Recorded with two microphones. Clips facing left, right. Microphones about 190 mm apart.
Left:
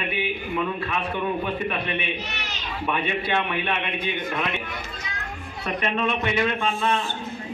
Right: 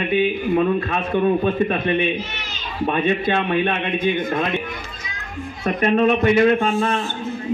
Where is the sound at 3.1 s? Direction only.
40° right (ahead or behind).